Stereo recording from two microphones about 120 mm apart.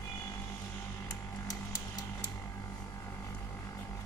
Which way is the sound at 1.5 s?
30° left (ahead or behind).